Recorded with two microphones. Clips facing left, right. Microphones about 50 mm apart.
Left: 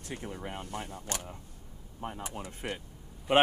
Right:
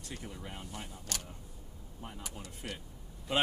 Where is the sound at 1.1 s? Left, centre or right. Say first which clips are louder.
Left 4 dB; left.